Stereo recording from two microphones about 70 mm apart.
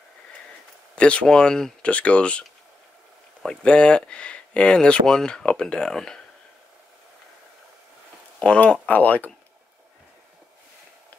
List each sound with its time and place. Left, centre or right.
0.9 s speech: centre
3.4 s speech: centre
8.4 s speech: centre